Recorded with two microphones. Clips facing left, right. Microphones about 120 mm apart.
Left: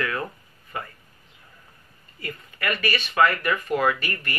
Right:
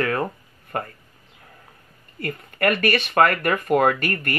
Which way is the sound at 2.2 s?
55° right (ahead or behind).